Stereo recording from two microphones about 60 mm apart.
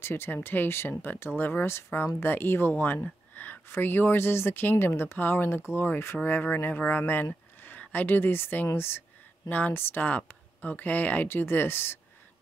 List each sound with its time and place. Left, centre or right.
0.0 s speech: left
3.0 s a sound: left
3.6 s speech: left
9.5 s a woman's voice: left
11.2 s speech: left